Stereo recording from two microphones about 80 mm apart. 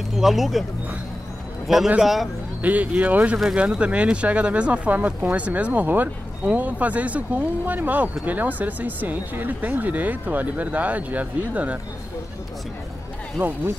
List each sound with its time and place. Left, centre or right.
0.1 s speech: centre
2.0 s a man's voice: centre
2.6 s speech: centre
3.3 s speech: centre
13.4 s speech: centre